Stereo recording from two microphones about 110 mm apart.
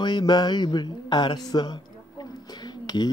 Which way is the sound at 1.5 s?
40° left (ahead or behind).